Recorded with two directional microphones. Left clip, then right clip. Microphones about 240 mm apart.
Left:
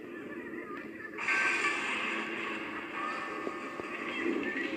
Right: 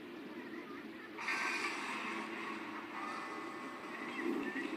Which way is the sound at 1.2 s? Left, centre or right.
Right.